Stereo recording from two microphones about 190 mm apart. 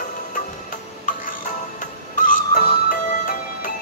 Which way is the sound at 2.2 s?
45° left (ahead or behind).